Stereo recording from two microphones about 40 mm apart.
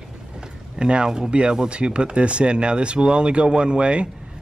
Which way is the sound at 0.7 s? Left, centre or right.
Right.